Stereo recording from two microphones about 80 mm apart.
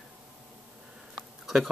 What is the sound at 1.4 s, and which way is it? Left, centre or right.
Speech, centre.